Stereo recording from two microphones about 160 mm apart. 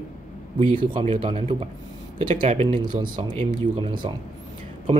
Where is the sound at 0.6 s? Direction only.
35° right (ahead or behind).